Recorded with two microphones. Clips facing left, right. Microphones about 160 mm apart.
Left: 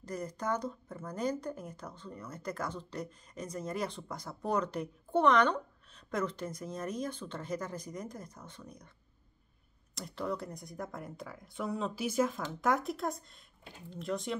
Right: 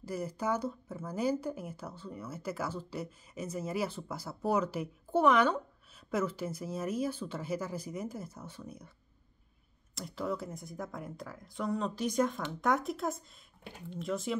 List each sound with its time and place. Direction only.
0.0 s speech: 5° right (ahead or behind)
9.9 s speech: centre (ahead or behind)